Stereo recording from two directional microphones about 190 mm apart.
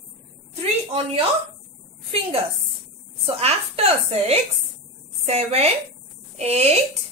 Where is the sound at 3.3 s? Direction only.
30° right (ahead or behind).